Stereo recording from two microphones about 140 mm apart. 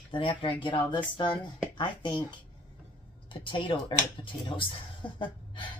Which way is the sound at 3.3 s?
35° left (ahead or behind).